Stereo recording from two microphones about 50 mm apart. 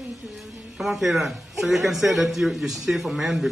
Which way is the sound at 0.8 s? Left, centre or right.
Centre.